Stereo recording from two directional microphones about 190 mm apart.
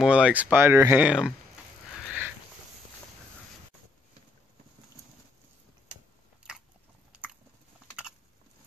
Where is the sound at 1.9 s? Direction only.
10° right (ahead or behind).